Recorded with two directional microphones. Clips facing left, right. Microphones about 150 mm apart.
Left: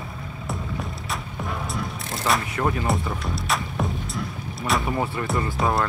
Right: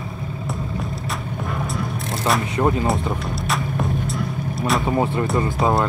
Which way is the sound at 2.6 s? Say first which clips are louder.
Right 5 dB; 20° right (ahead or behind).